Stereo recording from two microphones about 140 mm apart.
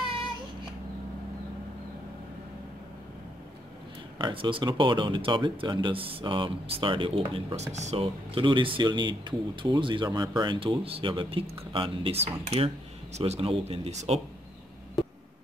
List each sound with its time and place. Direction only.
4.2 s speech: 35° right (ahead or behind)
7.7 s speech: 55° right (ahead or behind)
8.0 s speech: 35° right (ahead or behind); by 14.2 s 50° right (ahead or behind)